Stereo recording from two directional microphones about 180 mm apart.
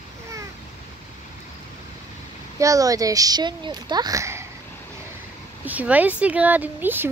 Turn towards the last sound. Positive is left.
turn(degrees=-10)  # may be behind; listen again after turning